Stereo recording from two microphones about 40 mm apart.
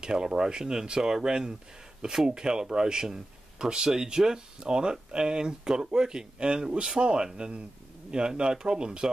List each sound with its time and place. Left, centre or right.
0.0 s speech: centre